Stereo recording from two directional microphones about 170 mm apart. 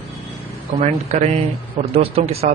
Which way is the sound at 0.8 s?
40° right (ahead or behind).